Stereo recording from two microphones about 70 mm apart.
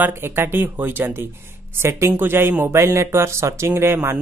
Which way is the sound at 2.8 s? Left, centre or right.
Right.